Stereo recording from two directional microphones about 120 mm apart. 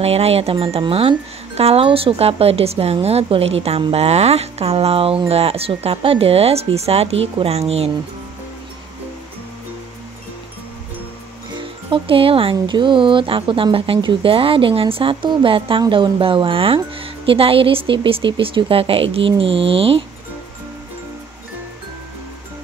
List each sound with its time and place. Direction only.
0.0 s speech: 60° right (ahead or behind)
11.5 s speech: 45° right (ahead or behind)